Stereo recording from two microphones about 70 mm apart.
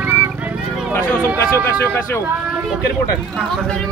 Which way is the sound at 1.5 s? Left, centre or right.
Left.